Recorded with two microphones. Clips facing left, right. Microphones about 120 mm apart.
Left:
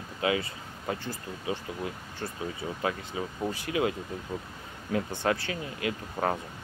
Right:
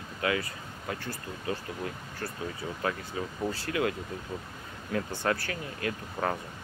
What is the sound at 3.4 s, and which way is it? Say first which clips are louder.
Speech: left 1 dB; 15° left (ahead or behind).